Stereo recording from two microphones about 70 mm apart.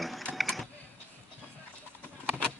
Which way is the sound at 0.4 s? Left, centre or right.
Centre.